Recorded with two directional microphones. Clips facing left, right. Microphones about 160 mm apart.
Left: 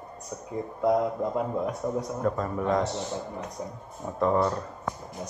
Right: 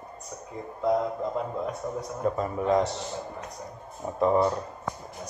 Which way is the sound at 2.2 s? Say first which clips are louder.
Right 3 dB; 15° right (ahead or behind).